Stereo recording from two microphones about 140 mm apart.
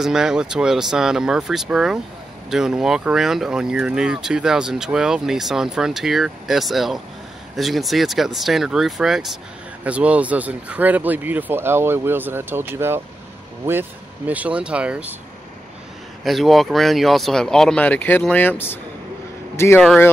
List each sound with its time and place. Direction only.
0.0 s speech: 5° right (ahead or behind)
16.3 s speech: centre (ahead or behind); by 19.8 s 20° left (ahead or behind)